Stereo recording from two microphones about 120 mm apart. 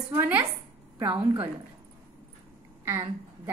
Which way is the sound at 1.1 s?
45° right (ahead or behind).